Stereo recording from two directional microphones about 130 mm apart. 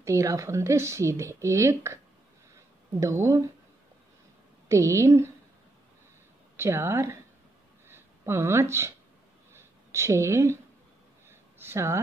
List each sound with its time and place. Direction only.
0.0 s a woman's voice: 25° right (ahead or behind)
4.6 s a woman's voice: 25° right (ahead or behind)
6.5 s a woman's voice: 20° right (ahead or behind)
9.5 s a sound: 20° right (ahead or behind)